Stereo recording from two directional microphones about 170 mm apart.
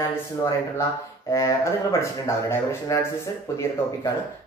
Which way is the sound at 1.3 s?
20° left (ahead or behind).